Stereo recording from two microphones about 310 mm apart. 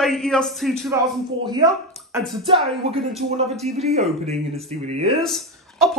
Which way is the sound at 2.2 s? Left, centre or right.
Centre.